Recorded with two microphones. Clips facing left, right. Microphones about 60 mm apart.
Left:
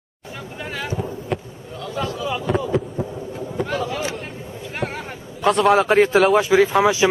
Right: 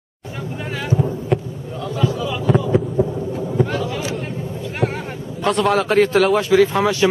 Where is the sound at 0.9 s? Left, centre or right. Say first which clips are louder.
Right 10 dB; centre.